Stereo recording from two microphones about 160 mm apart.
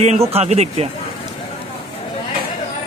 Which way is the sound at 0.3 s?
40° right (ahead or behind).